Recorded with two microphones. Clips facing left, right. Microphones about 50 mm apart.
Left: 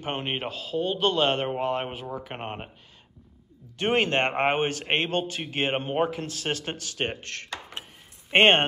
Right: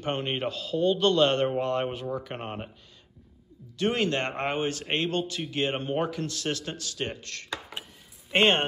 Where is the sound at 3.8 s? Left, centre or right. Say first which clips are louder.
Left 3 dB; left.